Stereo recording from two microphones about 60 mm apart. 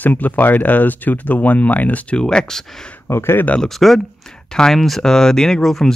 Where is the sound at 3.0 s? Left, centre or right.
Left.